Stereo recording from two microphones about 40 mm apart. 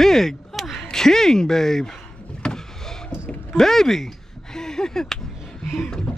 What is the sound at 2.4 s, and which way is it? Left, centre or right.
Vehicle, left.